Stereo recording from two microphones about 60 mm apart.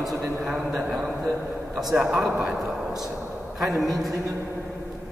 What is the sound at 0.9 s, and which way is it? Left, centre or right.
A man's voice, centre.